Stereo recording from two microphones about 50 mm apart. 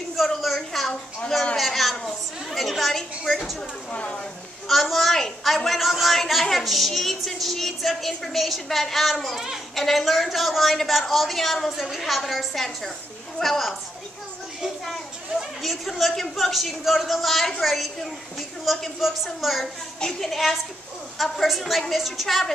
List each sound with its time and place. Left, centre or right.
0.1 s a sound: centre
1.6 s a woman's voice: centre
3.9 s speech: left
4.6 s a woman's voice: centre
14.9 s a woman's voice: centre
18.9 s a woman's voice: centre